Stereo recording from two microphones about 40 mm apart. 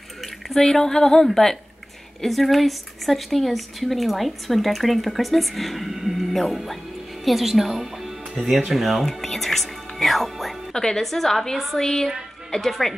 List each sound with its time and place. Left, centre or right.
0.5 s a woman's voice: centre
10.7 s a woman's voice: centre
11.1 s a woman's voice: centre